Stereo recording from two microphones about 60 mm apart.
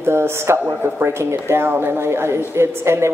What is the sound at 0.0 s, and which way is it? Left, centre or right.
Speech, right.